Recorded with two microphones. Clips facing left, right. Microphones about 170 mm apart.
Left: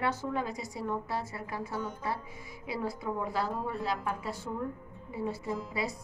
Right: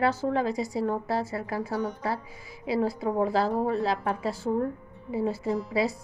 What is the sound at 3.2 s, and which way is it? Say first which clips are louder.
Speech: right 10 dB; 85° right.